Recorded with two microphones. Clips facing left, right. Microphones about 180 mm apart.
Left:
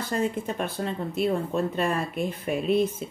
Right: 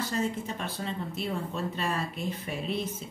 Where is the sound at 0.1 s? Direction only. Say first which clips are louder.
Left 4 dB; 55° left (ahead or behind).